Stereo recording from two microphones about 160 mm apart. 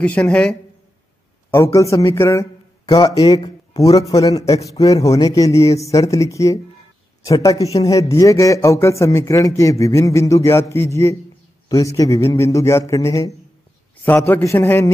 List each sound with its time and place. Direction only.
0.0 s a man's voice: 10° left (ahead or behind)
1.5 s a man's voice: 20° left (ahead or behind)